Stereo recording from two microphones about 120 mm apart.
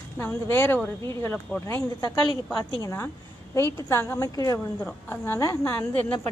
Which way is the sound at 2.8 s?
25° left (ahead or behind).